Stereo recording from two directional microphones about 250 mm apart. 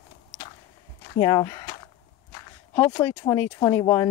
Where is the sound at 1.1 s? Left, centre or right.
Centre.